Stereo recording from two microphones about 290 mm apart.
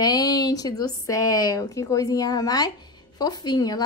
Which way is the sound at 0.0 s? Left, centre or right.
Centre.